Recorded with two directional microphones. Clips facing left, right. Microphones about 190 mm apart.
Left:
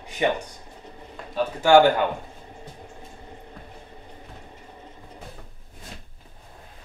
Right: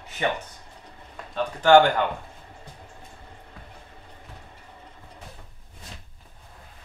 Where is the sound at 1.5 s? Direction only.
10° left (ahead or behind).